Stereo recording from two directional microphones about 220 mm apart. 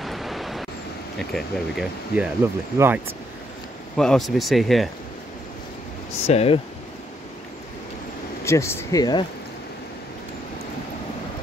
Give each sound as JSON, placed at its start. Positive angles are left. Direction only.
{"t": 0.0, "sound": "a sound", "side_deg": 0}
{"t": 1.3, "sound": "speech", "side_deg": -5}
{"t": 3.9, "sound": "speech", "side_deg": 0}
{"t": 6.2, "sound": "speech", "side_deg": 25}
{"t": 8.5, "sound": "speech", "side_deg": 10}